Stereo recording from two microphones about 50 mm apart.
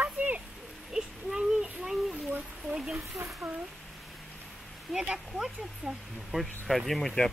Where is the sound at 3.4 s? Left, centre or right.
Right.